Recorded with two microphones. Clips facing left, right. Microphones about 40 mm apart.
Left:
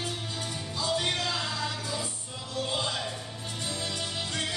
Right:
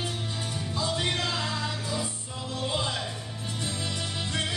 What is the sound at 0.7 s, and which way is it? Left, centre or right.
Music, centre.